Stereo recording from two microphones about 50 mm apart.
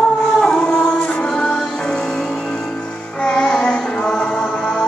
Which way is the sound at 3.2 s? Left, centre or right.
Centre.